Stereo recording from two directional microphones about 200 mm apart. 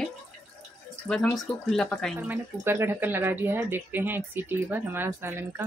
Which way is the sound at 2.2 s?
10° right (ahead or behind).